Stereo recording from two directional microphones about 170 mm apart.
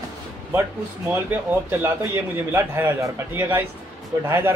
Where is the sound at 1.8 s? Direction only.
15° right (ahead or behind).